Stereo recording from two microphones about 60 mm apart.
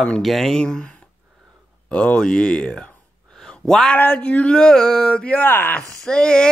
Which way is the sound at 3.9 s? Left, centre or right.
Left.